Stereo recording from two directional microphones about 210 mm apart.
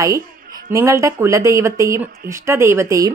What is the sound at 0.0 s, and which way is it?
A woman's voice, 15° right (ahead or behind).